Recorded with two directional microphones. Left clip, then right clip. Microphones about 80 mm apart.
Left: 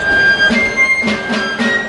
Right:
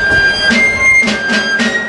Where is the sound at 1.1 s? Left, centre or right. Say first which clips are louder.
Right 4 dB; right.